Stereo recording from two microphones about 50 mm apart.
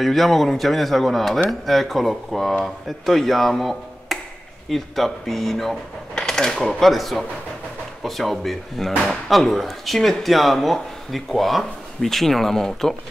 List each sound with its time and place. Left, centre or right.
0.0 s speech: centre
6.1 s coin: centre
6.6 s speech: centre